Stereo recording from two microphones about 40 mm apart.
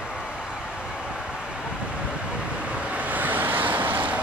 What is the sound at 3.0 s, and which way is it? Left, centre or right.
Vehicle, right.